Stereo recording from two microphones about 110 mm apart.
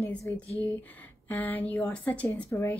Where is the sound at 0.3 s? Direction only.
20° left (ahead or behind).